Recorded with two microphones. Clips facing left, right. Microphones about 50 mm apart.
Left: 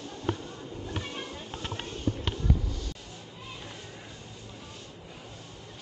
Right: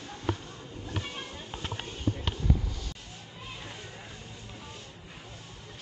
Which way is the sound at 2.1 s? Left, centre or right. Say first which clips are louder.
Left 1 dB; centre.